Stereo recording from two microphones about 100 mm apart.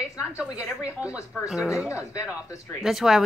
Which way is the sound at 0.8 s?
15° right (ahead or behind).